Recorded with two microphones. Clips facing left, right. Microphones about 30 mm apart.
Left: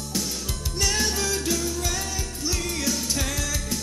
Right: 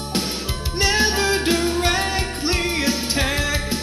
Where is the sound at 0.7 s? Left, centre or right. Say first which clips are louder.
Right 7 dB; right.